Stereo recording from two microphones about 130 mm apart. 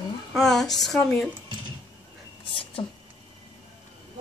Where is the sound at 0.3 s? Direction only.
5° left (ahead or behind).